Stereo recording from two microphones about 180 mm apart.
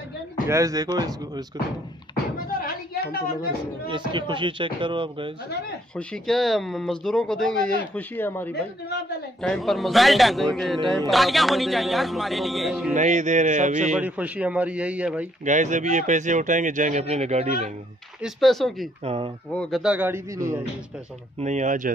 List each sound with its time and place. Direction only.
0.5 s speech: 20° right (ahead or behind)
2.3 s knock: 55° left (ahead or behind)
3.8 s speech: 25° right (ahead or behind)
5.9 s a man's voice: 5° left (ahead or behind)
12.9 s speech: 40° right (ahead or behind)
13.9 s a man's voice: 5° right (ahead or behind)
15.4 s speech: 40° right (ahead or behind)
18.2 s a man's voice: centre (ahead or behind)
19.0 s speech: 30° right (ahead or behind)
19.5 s a man's voice: 5° left (ahead or behind); by 20.6 s 15° right (ahead or behind)
21.4 s speech: 40° right (ahead or behind)